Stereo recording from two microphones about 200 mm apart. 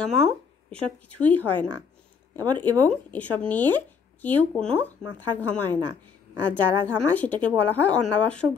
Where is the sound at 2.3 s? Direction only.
20° right (ahead or behind).